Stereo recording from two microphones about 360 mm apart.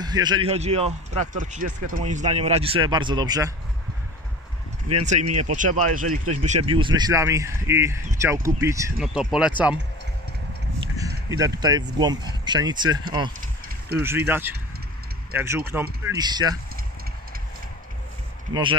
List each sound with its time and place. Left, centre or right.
0.0 s a man's voice: centre
4.9 s speech: right
5.5 s a man's voice: right; by 9.5 s centre
11.2 s a man's voice: centre
14.0 s a man's voice: centre
18.5 s a man's voice: centre